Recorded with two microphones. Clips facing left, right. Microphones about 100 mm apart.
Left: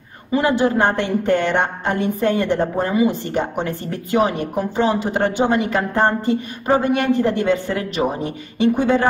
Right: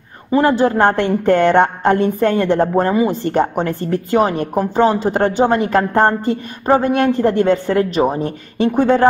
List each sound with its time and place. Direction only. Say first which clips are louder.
0.3 s a woman's voice: right 4 dB; 40° right (ahead or behind)